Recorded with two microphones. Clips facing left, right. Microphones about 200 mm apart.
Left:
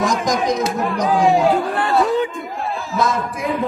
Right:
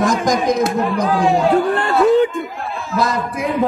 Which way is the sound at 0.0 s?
Centre (ahead or behind).